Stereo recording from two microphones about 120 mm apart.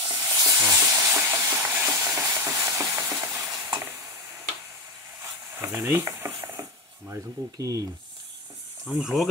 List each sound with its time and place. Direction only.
0.1 s a sound: 25° right (ahead or behind)
2.1 s frying: 20° right (ahead or behind)
5.2 s stir: 20° right (ahead or behind)
7.1 s speech: 25° right (ahead or behind)
8.8 s speech: 5° right (ahead or behind)